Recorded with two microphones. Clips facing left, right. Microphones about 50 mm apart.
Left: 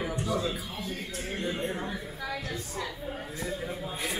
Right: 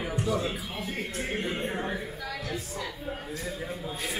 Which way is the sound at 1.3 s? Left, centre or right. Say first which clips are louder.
Left 1 dB; right.